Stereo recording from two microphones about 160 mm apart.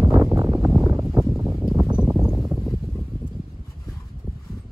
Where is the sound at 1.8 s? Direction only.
5° right (ahead or behind).